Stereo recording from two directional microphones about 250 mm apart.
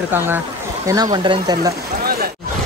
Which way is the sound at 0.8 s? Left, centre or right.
Centre.